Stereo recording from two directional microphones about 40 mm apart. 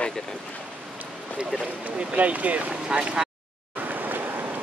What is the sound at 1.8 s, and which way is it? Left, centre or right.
Speech, right.